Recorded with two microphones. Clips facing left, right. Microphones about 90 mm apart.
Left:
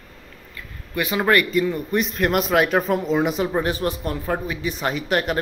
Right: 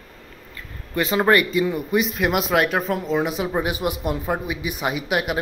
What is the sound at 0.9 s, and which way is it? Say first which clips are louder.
Speech: right 1 dB; 30° right (ahead or behind).